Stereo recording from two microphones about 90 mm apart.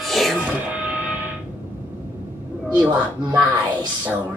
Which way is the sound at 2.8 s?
15° right (ahead or behind).